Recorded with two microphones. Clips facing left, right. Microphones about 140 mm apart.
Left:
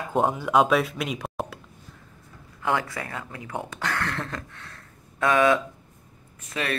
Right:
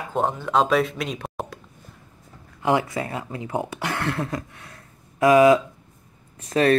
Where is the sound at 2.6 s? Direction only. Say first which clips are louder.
Right 5 dB; 20° right (ahead or behind).